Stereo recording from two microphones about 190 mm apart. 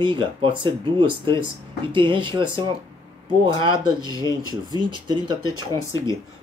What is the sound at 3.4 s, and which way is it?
Speech, 25° right (ahead or behind).